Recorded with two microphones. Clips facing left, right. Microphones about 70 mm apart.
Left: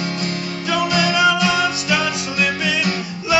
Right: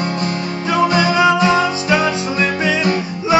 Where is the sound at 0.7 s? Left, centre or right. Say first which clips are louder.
Right 4 dB; right.